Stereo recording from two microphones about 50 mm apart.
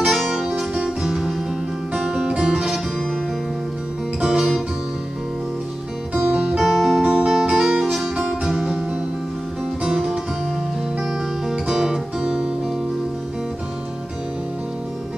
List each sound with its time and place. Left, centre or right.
0.0 s music: centre
4.2 s music: centre
6.1 s music: centre
6.6 s music: centre
7.0 s music: centre
8.5 s music: centre
11.0 s music: centre